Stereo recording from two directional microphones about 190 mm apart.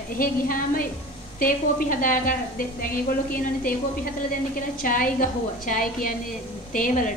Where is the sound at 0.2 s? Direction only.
45° left (ahead or behind).